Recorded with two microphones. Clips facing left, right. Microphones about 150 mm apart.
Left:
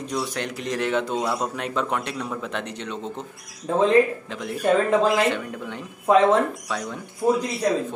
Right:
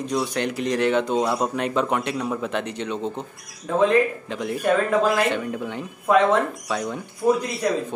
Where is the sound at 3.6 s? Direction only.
30° left (ahead or behind).